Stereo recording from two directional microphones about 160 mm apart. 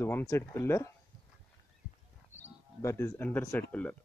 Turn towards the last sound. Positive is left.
turn(degrees=10)  # may be behind; listen again after turning